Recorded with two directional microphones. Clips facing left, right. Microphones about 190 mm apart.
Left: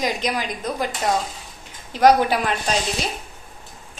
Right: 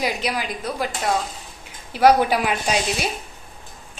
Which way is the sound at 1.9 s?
10° right (ahead or behind).